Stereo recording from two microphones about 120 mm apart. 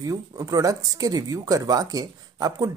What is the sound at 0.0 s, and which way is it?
Speech, 30° right (ahead or behind).